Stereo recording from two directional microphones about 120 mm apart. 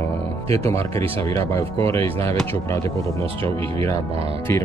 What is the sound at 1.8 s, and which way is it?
Speech, 50° right (ahead or behind).